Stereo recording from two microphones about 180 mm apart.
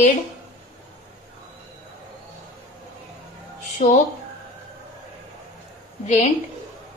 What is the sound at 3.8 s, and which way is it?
Speech, 40° left (ahead or behind).